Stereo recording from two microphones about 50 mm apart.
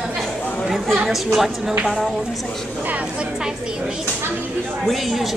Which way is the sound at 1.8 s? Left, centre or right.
Centre.